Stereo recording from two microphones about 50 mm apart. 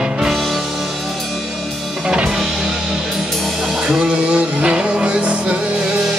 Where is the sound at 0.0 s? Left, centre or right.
Centre.